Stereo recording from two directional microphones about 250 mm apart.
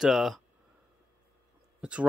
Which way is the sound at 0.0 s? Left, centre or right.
Centre.